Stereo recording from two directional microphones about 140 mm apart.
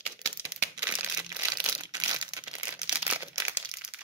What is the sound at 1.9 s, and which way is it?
Crumpling, 30° right (ahead or behind).